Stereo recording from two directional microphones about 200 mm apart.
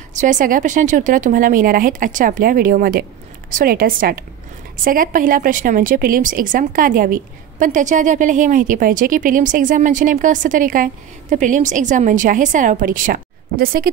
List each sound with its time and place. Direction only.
0.1 s a woman's voice: 40° right (ahead or behind)